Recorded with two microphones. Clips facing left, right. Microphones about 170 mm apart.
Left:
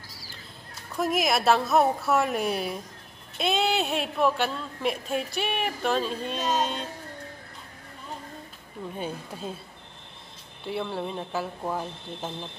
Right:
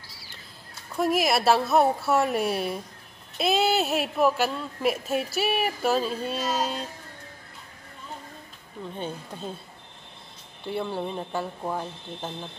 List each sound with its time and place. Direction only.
0.1 s a sound: 40° left (ahead or behind)
0.9 s speech: centre (ahead or behind)
8.9 s speech: 10° left (ahead or behind)
10.6 s speech: centre (ahead or behind)